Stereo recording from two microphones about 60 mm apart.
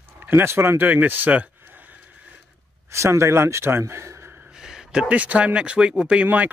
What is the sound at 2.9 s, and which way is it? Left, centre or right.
Speech, right.